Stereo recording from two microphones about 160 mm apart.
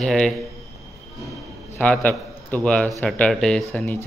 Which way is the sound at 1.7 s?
10° left (ahead or behind).